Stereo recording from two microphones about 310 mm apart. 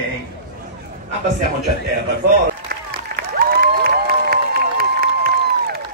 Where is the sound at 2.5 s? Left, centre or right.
Right.